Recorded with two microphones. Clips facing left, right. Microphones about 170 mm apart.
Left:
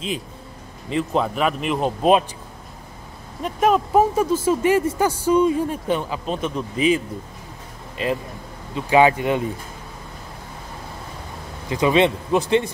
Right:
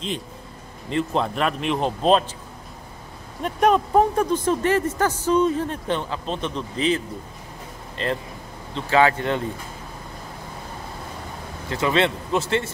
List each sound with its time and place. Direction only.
0.8 s a man's voice: centre (ahead or behind)
3.4 s speech: centre (ahead or behind)
8.0 s speech: 10° left (ahead or behind)
11.7 s speech: 15° left (ahead or behind)